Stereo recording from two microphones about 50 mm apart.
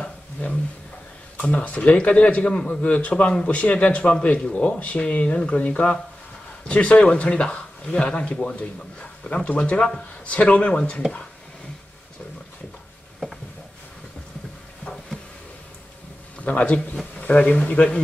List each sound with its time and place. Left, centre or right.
1.5 s a man's voice: left
9.8 s a man's voice: centre
10.2 s a man's voice: left
16.4 s a man's voice: left